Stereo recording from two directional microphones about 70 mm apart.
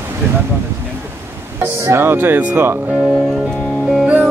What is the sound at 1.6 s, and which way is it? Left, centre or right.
Speech, right.